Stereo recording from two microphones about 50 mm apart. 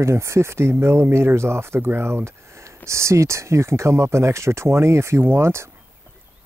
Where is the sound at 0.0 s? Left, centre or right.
Right.